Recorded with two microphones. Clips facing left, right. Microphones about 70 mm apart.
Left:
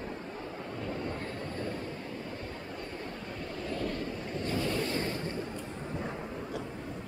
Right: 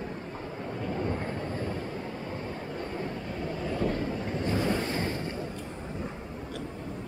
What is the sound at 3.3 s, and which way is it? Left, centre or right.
Waves, centre.